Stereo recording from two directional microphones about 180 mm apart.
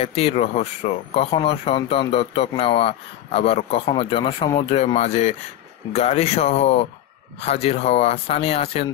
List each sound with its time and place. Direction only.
0.0 s speech: 35° left (ahead or behind)